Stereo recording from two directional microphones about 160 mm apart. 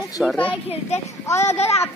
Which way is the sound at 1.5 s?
40° left (ahead or behind).